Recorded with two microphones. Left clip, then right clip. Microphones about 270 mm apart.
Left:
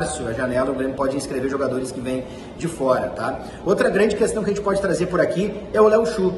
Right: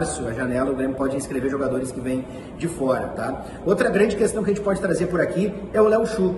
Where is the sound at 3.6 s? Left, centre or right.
Centre.